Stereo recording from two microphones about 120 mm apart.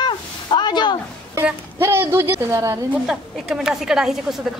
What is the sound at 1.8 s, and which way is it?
Speech, 20° right (ahead or behind).